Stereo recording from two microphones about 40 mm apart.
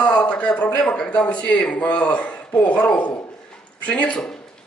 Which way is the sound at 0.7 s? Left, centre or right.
Left.